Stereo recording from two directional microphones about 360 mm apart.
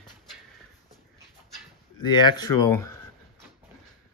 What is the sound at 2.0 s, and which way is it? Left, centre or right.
Speech, centre.